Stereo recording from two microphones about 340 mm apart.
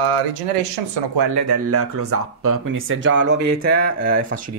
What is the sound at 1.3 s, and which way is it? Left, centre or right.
Speech, right.